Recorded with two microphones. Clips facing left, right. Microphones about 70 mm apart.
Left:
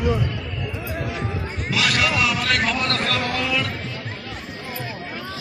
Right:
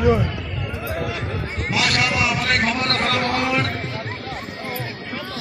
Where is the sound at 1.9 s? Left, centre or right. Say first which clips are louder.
Left 1 dB; centre.